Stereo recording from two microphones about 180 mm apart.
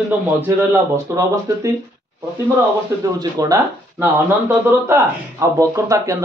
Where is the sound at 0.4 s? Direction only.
15° right (ahead or behind).